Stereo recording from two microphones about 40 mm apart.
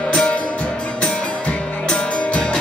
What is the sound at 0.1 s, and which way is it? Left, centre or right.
Music, left.